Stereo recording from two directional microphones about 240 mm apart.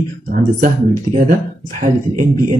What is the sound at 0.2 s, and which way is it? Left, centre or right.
A man's voice, right.